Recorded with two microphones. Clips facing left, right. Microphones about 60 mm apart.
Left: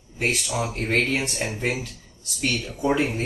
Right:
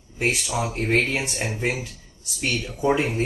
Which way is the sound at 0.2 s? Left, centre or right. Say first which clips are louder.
Right 1 dB; centre.